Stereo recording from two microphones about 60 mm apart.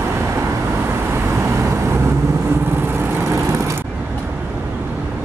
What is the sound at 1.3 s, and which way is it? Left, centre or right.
Vehicle, right.